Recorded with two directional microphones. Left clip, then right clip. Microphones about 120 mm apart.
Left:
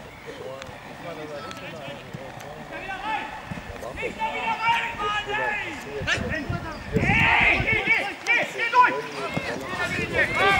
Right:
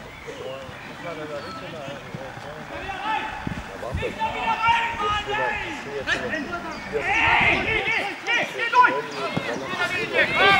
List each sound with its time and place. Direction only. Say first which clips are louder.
4.0 s speech: right 1 dB; 5° right (ahead or behind)
9.1 s speech: right 2 dB; 20° right (ahead or behind)